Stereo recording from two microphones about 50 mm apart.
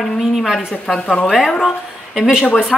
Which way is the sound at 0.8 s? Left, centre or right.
Centre.